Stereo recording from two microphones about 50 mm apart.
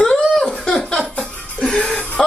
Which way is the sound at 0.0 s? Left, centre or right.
Centre.